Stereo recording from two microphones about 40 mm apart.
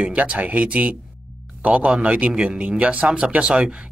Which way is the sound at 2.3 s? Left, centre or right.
Right.